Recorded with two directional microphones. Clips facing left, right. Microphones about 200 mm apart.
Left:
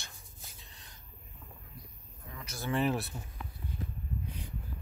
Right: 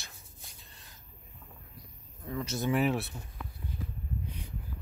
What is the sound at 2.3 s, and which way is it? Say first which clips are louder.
Speech: right 10 dB; 25° right (ahead or behind).